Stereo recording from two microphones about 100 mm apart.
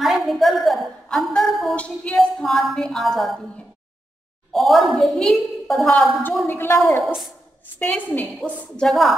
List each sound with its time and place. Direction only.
0.0 s a sound: centre (ahead or behind)
2.1 s a woman's voice: centre (ahead or behind)
4.5 s a woman's voice: centre (ahead or behind)
6.4 s a woman's voice: 20° left (ahead or behind)
8.4 s a woman's voice: 5° left (ahead or behind)